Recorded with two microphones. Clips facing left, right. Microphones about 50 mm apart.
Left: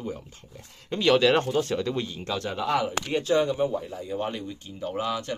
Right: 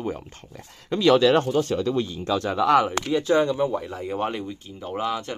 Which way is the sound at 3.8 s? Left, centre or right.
Right.